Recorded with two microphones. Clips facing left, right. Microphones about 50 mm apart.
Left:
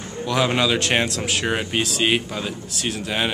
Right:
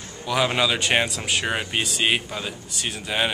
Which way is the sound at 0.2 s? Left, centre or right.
Centre.